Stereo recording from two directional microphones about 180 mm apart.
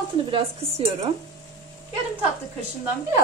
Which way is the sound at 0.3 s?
35° right (ahead or behind).